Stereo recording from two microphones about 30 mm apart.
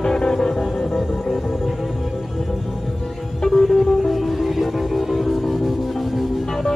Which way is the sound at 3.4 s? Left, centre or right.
Centre.